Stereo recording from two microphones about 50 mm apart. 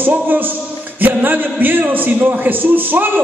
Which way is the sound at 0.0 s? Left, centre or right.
Right.